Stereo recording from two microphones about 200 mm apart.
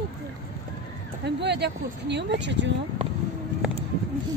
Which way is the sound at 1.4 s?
55° right (ahead or behind).